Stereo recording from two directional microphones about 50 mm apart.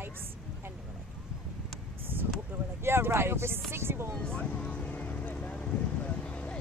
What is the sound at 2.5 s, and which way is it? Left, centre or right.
Speech, right.